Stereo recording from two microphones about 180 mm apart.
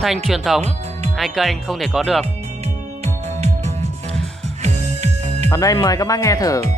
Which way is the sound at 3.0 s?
35° right (ahead or behind).